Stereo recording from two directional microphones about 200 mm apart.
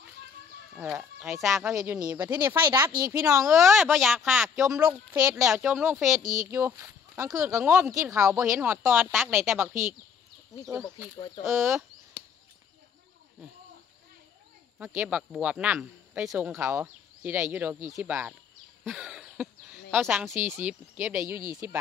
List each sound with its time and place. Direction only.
0.7 s speech: centre (ahead or behind)
3.4 s speech: centre (ahead or behind)
6.2 s speech: 40° right (ahead or behind)
6.5 s speech: 15° right (ahead or behind)
11.1 s speech: 35° left (ahead or behind)
15.0 s speech: 5° right (ahead or behind)
18.9 s throat clearing: centre (ahead or behind)
19.9 s speech: 5° right (ahead or behind)
20.3 s speech: 35° right (ahead or behind)
20.6 s speech: 5° right (ahead or behind)